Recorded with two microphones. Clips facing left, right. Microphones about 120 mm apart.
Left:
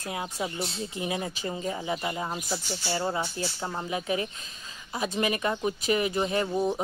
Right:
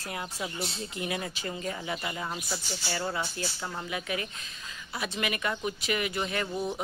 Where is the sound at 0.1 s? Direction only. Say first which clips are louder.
Left 4 dB; 20° left (ahead or behind).